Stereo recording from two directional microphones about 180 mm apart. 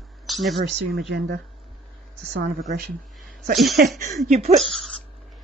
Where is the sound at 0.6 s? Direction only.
80° right.